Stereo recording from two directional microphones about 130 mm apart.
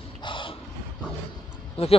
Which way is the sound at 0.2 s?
40° left (ahead or behind).